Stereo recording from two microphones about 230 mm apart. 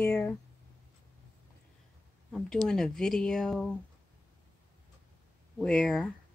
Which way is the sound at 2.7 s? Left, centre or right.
Centre.